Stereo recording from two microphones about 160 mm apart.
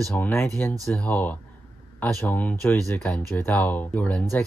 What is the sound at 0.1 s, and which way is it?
Speech, 15° left (ahead or behind).